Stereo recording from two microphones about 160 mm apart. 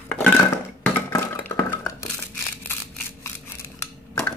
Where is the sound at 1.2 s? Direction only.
15° left (ahead or behind).